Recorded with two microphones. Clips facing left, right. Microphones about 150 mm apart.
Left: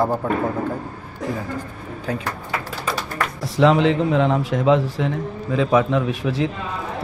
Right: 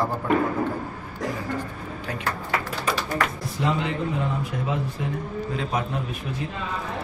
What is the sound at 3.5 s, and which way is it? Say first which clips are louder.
Speech: left 11 dB; 90° left.